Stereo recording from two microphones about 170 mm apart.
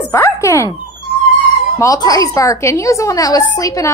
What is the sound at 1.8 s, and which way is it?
A woman's voice, 20° left (ahead or behind).